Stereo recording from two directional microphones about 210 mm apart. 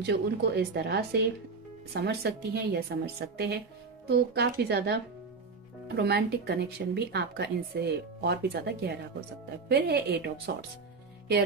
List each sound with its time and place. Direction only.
0.0 s speech: 50° right (ahead or behind)